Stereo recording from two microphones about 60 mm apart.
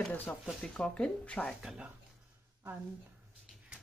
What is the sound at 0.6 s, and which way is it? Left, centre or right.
Speech, centre.